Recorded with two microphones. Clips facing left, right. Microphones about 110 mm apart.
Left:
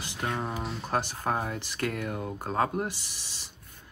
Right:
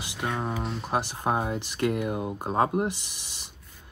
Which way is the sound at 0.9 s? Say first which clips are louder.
Right 2 dB; 15° right (ahead or behind).